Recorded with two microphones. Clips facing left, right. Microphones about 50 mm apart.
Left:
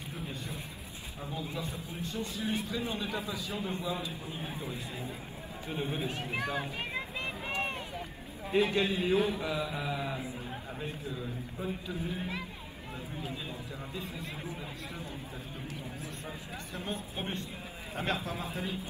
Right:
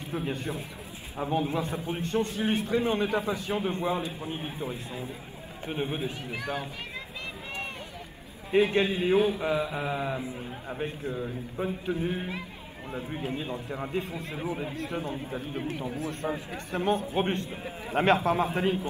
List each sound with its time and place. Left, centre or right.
0.1 s a man's voice: right
8.5 s a man's voice: right
8.9 s a man's voice: right
9.4 s mantra: right
10.8 s a man's voice: right